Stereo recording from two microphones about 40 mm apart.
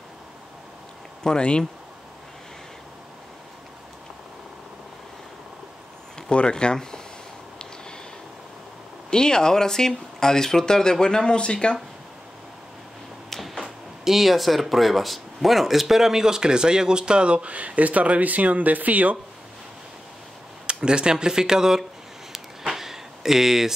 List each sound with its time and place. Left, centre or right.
1.2 s speech: left
6.3 s speech: left
9.1 s speech: centre
13.3 s a sound: centre
14.0 s speech: centre; by 19.1 s right
20.6 s speech: right
22.3 s a sound: centre